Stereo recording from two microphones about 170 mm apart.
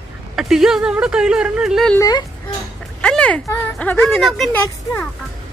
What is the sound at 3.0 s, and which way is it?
Speech, 5° left (ahead or behind).